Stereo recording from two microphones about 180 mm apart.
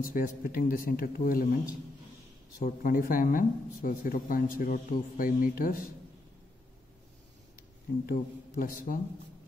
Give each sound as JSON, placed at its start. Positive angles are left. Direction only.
{"t": 0.0, "sound": "speech", "side_deg": 50}
{"t": 2.6, "sound": "speech", "side_deg": 50}
{"t": 8.1, "sound": "speech", "side_deg": 50}